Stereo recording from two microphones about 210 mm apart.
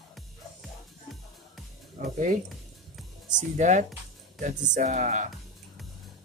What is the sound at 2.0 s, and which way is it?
Speech, 40° right (ahead or behind).